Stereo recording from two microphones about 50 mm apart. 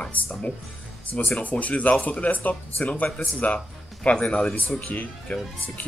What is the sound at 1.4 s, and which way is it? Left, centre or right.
Speech, left.